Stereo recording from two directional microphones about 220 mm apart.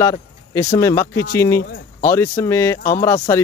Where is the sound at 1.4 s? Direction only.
10° left (ahead or behind).